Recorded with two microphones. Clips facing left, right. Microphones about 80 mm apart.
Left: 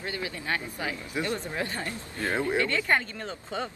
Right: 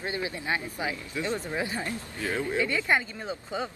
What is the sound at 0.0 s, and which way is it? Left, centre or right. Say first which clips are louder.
A woman's voice: right 2 dB; right.